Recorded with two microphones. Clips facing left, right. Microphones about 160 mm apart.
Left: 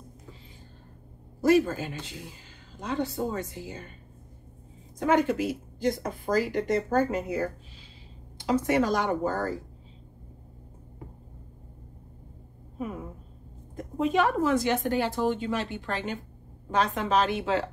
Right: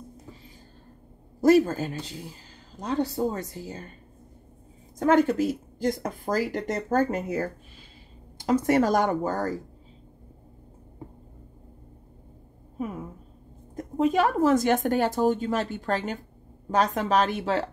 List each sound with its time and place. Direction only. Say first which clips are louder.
1.4 s a woman's voice: right 3 dB; 45° right (ahead or behind)
4.9 s speech: right 3 dB; 50° right (ahead or behind)
13.7 s speech: right 2 dB; 40° right (ahead or behind)